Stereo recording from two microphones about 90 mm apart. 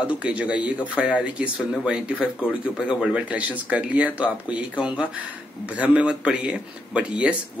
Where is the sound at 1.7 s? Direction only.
Centre (ahead or behind).